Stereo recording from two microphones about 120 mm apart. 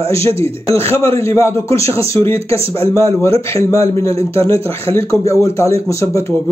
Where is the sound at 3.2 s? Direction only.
55° right (ahead or behind).